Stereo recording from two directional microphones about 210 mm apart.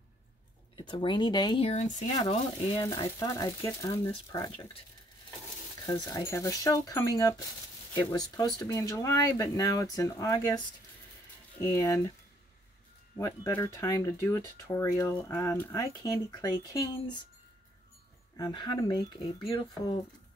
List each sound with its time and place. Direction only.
0.7 s speech: 25° left (ahead or behind)
1.7 s speech: 35° left (ahead or behind)
2.8 s speech: 15° left (ahead or behind)
5.9 s speech: 15° left (ahead or behind)
11.6 s speech: 15° left (ahead or behind)
13.2 s speech: 10° left (ahead or behind)
18.4 s speech: 20° left (ahead or behind)